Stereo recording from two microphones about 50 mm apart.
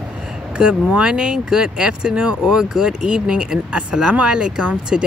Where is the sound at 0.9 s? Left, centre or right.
Centre.